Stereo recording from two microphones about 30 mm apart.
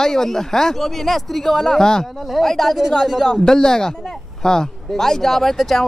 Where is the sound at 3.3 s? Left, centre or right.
Left.